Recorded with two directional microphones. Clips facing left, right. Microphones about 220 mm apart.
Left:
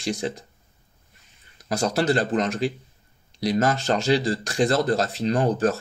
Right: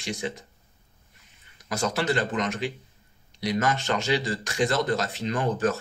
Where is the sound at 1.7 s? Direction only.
35° left (ahead or behind).